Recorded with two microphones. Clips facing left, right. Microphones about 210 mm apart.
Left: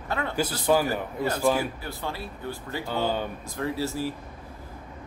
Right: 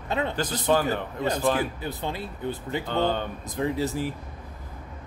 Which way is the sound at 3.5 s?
20° right (ahead or behind).